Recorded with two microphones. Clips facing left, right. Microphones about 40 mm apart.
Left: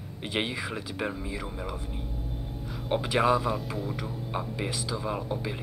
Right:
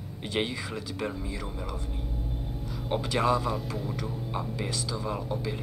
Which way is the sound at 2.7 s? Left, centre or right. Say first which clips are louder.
Left 2 dB; centre.